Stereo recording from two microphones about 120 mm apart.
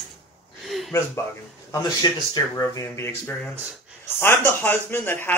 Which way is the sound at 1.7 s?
35° left (ahead or behind).